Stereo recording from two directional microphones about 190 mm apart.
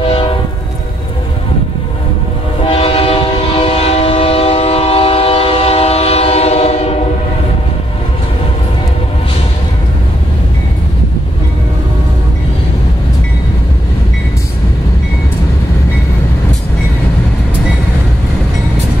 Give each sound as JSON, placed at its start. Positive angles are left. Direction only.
{"t": 0.0, "sound": "train", "side_deg": 25}
{"t": 2.7, "sound": "train", "side_deg": 30}